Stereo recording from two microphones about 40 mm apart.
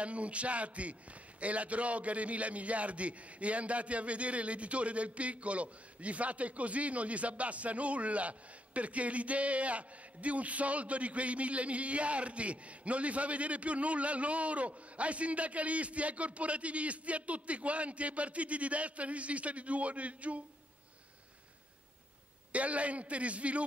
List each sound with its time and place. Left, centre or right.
0.0 s a man's voice: right
22.5 s a man's voice: right